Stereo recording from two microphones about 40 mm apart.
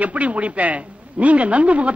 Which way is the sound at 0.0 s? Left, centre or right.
Right.